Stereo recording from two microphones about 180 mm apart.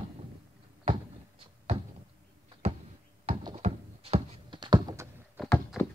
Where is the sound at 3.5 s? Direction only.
35° right (ahead or behind); by 5.4 s 15° right (ahead or behind).